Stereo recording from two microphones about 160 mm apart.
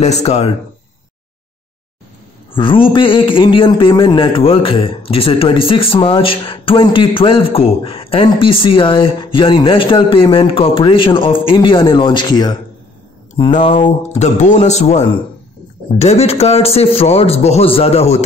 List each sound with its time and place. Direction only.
0.0 s speech: 45° left (ahead or behind)
2.5 s a man's voice: 35° left (ahead or behind)
13.7 s a man's voice: 45° left (ahead or behind)